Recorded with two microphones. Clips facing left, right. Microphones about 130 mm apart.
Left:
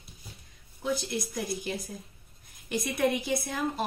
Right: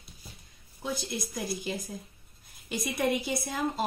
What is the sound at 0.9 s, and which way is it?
Speech, 15° right (ahead or behind).